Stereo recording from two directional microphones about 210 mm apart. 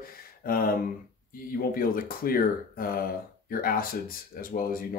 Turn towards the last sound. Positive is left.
turn(degrees=40)  # may be behind; listen again after turning